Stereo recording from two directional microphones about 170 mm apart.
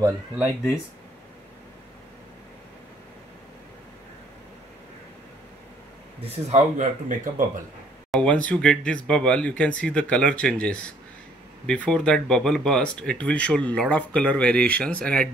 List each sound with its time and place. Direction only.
6.2 s speech: 45° right (ahead or behind)
8.1 s speech: 5° left (ahead or behind)